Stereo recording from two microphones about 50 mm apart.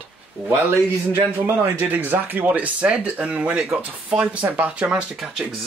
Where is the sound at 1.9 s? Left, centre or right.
Right.